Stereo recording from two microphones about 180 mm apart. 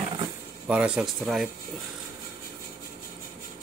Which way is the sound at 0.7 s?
5° right (ahead or behind).